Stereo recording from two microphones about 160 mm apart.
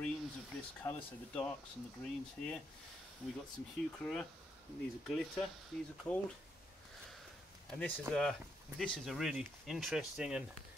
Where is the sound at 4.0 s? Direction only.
5° left (ahead or behind).